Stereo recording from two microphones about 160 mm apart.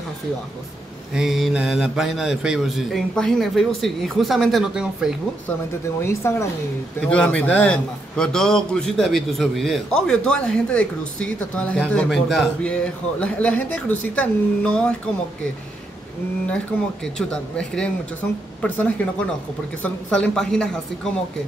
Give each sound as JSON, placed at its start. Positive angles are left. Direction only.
{"t": 1.1, "sound": "a man's voice", "side_deg": 0}
{"t": 6.0, "sound": "a man's voice", "side_deg": 15}
{"t": 17.3, "sound": "a man's voice", "side_deg": 5}